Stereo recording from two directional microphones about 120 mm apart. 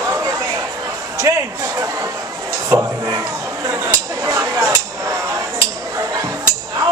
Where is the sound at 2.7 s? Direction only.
30° right (ahead or behind).